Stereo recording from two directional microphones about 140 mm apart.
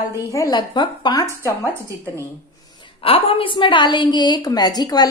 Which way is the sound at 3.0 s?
40° left (ahead or behind).